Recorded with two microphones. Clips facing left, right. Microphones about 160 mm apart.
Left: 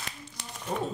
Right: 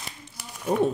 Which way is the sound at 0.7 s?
70° right (ahead or behind).